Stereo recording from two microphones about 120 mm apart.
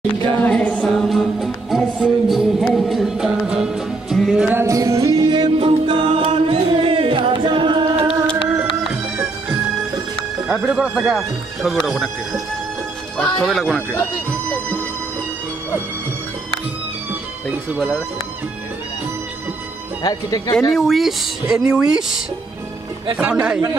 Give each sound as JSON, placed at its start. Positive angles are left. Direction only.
{"t": 0.4, "sound": "a capella", "side_deg": 10}
{"t": 1.0, "sound": "music", "side_deg": 0}
{"t": 4.5, "sound": "music", "side_deg": -20}
{"t": 10.6, "sound": "speech", "side_deg": -10}
{"t": 20.0, "sound": "speech", "side_deg": 30}
{"t": 20.7, "sound": "speech", "side_deg": 0}